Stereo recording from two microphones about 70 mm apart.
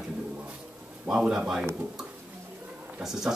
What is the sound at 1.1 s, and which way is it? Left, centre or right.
Speech, centre.